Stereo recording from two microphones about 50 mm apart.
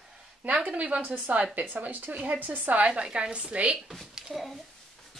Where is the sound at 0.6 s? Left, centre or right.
Right.